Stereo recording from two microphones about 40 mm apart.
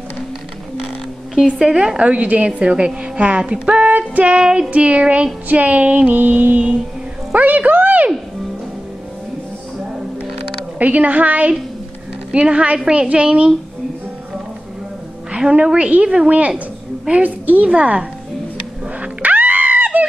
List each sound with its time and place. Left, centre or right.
1.6 s a woman's voice: right
4.4 s a woman's voice: right
4.6 s a woman's voice: right
6.1 s a woman's voice: right
10.8 s a woman's voice: right
12.3 s a woman's voice: right
15.3 s a woman's voice: right
16.3 s a woman's voice: right
17.6 s a woman's voice: right
18.9 s music: right